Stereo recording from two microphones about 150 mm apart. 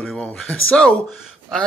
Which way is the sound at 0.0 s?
5° left (ahead or behind).